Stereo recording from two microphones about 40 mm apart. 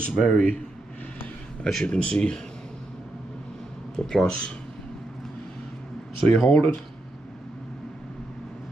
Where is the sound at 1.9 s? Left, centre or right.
Left.